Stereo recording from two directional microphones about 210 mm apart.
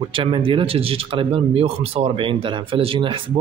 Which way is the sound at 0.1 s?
25° right (ahead or behind).